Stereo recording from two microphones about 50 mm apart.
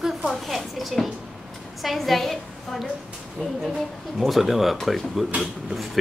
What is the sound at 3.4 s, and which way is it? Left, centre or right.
Speech, left.